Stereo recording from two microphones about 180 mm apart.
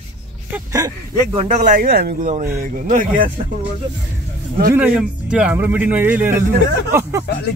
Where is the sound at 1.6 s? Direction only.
50° right (ahead or behind).